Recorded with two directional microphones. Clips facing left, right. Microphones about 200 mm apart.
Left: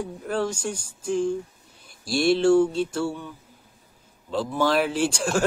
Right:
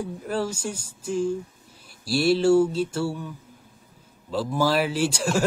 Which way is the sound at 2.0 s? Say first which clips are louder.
Even; 5° right (ahead or behind).